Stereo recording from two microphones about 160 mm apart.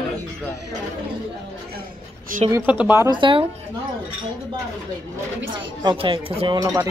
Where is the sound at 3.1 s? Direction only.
30° right (ahead or behind).